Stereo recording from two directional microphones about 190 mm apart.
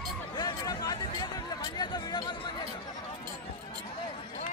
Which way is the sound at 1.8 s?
20° left (ahead or behind).